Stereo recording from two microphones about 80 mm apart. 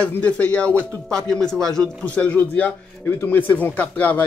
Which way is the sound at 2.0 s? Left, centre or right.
Centre.